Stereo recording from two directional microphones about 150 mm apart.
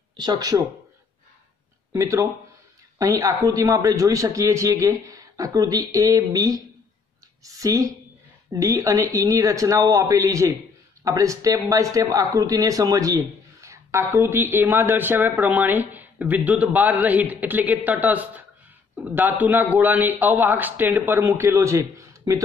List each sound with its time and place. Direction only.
0.2 s speech: 30° right (ahead or behind)
1.9 s speech: 20° right (ahead or behind)